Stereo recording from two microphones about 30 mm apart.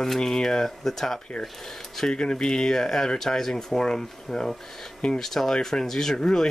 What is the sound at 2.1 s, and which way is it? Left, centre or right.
Speech, left.